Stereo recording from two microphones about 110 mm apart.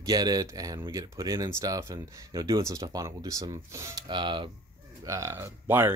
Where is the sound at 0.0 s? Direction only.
35° right (ahead or behind).